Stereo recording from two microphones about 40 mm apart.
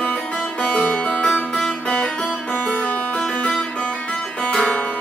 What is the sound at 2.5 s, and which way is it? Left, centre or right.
Music, left.